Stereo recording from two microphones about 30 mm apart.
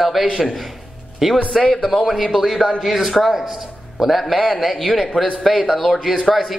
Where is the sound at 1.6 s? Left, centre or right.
Left.